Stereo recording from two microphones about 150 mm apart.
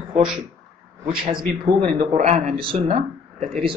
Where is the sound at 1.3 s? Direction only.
35° right (ahead or behind).